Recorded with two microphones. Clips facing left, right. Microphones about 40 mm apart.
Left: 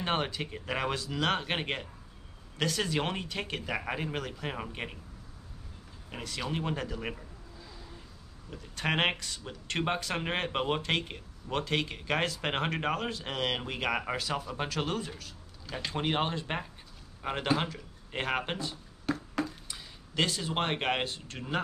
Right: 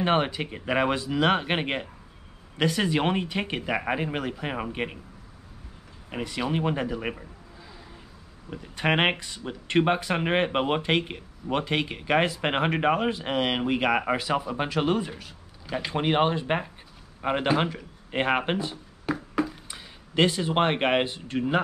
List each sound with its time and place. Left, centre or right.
0.0 s speech: centre
6.0 s speech: centre
8.5 s speech: centre